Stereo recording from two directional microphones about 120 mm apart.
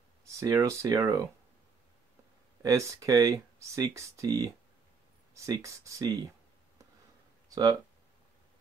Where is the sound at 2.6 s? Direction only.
25° right (ahead or behind).